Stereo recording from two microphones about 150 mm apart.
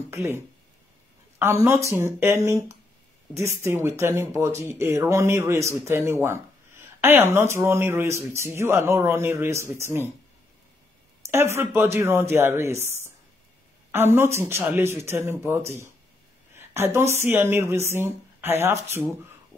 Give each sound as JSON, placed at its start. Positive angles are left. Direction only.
{"t": 0.1, "sound": "speech", "side_deg": -20}
{"t": 1.4, "sound": "speech", "side_deg": -15}
{"t": 3.6, "sound": "speech", "side_deg": -15}
{"t": 11.2, "sound": "speech", "side_deg": -15}
{"t": 13.9, "sound": "speech", "side_deg": -15}
{"t": 16.5, "sound": "a sound", "side_deg": -15}
{"t": 17.1, "sound": "speech", "side_deg": -15}